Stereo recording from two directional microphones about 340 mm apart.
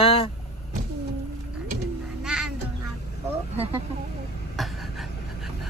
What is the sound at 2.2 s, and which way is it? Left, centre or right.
Music, centre.